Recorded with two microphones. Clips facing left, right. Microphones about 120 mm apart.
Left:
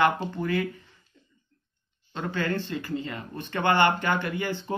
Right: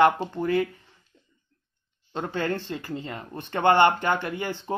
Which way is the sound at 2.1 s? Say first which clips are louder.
Right 1 dB; 30° right (ahead or behind).